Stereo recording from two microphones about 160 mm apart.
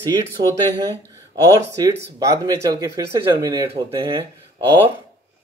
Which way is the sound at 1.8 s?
20° right (ahead or behind).